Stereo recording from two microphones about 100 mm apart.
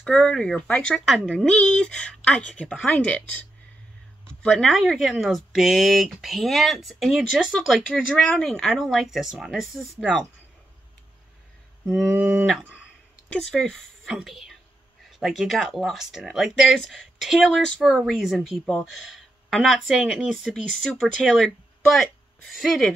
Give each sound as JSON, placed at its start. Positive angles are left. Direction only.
{"t": 0.0, "sound": "a woman's voice", "side_deg": 5}
{"t": 11.8, "sound": "mantra", "side_deg": -5}
{"t": 12.2, "sound": "a sound", "side_deg": -20}
{"t": 13.3, "sound": "speech", "side_deg": 5}